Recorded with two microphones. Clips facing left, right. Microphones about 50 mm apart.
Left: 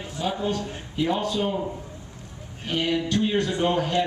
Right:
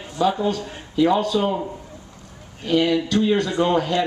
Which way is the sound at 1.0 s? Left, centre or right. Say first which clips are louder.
Right 6 dB; right.